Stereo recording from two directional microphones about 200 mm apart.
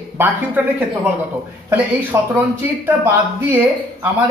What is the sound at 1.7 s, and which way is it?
Speech, 10° right (ahead or behind).